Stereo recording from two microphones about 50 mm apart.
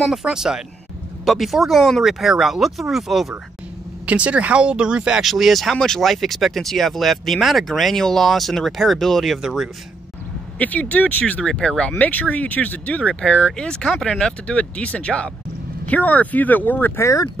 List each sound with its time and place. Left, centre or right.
0.1 s speech: centre
1.2 s speech: centre
4.0 s speech: right
5.2 s speech: centre
10.6 s speech: left
11.4 s speech: centre
12.0 s speech: left